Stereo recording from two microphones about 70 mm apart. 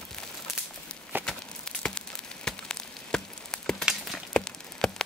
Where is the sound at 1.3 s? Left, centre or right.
Centre.